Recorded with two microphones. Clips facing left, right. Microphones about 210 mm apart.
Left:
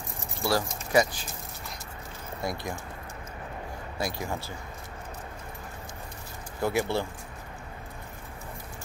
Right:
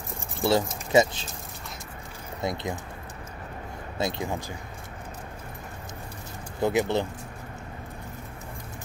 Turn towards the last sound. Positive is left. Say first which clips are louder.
# right 3 dB
turn(degrees=-20)  # may be behind; listen again after turning